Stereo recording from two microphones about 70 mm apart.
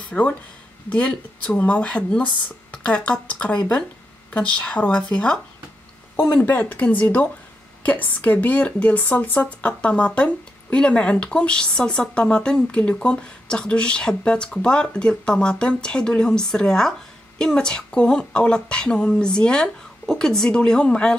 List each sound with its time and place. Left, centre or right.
0.1 s speech: centre